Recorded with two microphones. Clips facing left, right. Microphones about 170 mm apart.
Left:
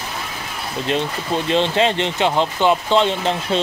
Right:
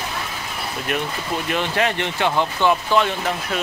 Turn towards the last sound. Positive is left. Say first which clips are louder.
# left 4 dB
turn(degrees=25)  # may be behind; listen again after turning